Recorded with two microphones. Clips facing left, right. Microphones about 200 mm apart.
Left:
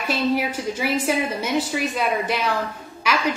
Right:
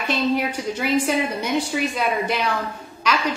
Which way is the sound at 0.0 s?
5° left (ahead or behind).